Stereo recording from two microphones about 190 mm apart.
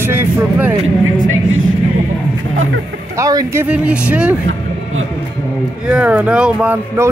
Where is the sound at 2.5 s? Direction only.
90° right.